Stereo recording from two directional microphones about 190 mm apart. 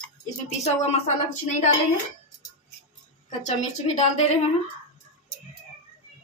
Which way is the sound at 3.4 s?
35° left (ahead or behind).